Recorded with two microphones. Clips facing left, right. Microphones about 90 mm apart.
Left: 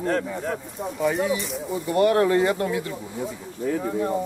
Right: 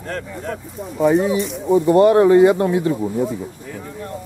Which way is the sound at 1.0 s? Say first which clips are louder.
Right 8 dB; 30° right (ahead or behind).